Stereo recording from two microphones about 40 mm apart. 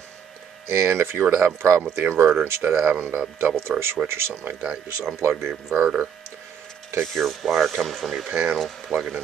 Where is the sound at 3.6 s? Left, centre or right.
Right.